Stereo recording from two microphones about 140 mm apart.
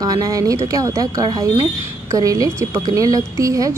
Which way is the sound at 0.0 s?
25° right (ahead or behind).